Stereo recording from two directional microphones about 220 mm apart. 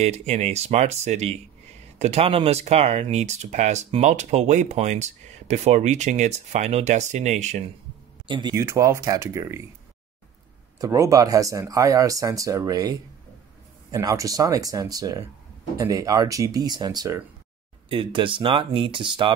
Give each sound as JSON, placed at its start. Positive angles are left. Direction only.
{"t": 0.0, "sound": "speech", "side_deg": -30}
{"t": 8.3, "sound": "speech", "side_deg": -20}
{"t": 10.8, "sound": "speech", "side_deg": -15}
{"t": 13.9, "sound": "speech", "side_deg": -15}